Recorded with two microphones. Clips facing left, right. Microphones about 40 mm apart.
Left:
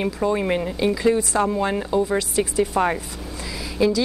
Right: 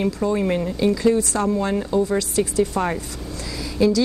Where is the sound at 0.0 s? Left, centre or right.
Centre.